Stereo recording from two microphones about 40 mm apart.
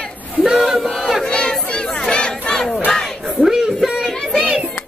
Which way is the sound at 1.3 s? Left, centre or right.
Left.